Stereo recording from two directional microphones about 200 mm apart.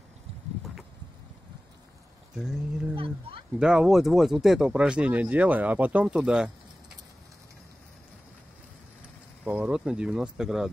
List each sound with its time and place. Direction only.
2.3 s speech: 5° right (ahead or behind)
2.9 s speech: 25° right (ahead or behind)
3.5 s speech: 5° right (ahead or behind)
9.4 s speech: 5° right (ahead or behind)